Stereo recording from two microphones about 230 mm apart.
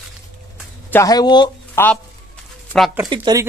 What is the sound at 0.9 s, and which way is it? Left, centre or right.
Speech, centre.